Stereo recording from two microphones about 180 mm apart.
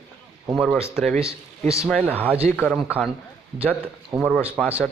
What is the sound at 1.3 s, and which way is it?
Speech, 15° left (ahead or behind).